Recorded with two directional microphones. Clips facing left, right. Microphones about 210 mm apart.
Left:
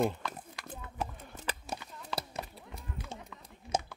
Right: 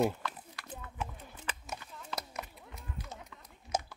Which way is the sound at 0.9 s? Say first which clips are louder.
Left 4 dB; 35° left (ahead or behind).